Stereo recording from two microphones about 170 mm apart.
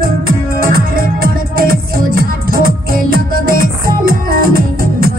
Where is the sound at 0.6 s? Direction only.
60° right (ahead or behind).